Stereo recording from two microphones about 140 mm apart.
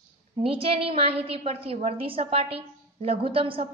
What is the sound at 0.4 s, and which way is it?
A woman's voice, 40° right (ahead or behind).